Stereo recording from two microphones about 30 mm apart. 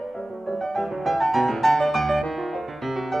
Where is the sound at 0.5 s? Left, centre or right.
Centre.